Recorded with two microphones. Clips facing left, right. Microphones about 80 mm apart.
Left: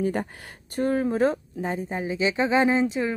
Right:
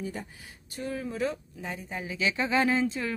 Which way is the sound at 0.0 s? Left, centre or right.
Left.